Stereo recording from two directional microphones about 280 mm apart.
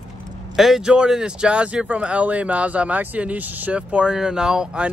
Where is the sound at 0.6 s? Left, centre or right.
Centre.